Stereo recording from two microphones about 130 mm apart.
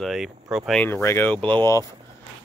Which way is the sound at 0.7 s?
5° left (ahead or behind).